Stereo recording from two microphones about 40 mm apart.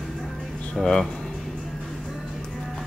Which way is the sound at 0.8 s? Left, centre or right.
Centre.